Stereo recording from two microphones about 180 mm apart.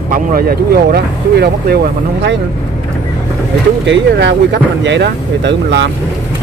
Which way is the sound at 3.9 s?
75° right (ahead or behind).